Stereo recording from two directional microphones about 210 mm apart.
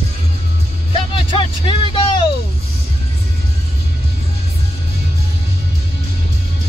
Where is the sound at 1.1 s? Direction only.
25° left (ahead or behind).